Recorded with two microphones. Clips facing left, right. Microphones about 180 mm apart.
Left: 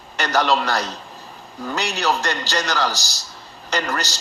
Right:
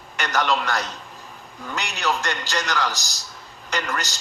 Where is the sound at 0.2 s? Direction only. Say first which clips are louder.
Left 4 dB; 35° left (ahead or behind).